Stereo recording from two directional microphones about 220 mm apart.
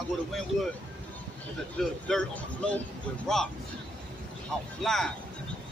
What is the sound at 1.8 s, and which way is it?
Speech, 5° left (ahead or behind).